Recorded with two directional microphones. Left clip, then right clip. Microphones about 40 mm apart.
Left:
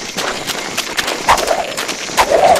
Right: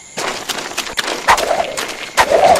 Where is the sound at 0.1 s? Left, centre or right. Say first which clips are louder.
Even; left.